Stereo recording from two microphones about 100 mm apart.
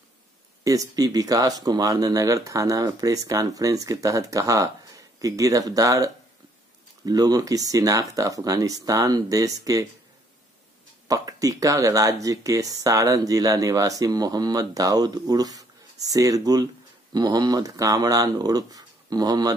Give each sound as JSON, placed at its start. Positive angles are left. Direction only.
{"t": 0.7, "sound": "speech", "side_deg": -35}
{"t": 11.1, "sound": "speech", "side_deg": -35}